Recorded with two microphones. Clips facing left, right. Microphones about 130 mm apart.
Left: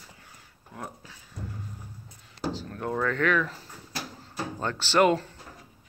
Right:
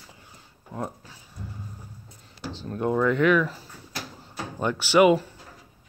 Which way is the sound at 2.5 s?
20° right (ahead or behind).